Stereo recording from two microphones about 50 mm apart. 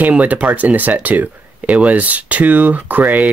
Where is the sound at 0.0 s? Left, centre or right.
Right.